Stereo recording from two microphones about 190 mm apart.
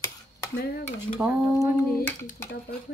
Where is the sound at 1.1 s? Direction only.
15° right (ahead or behind).